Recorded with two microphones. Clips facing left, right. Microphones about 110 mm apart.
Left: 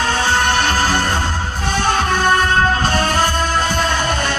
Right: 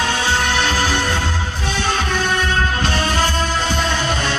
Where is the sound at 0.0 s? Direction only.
40° left (ahead or behind).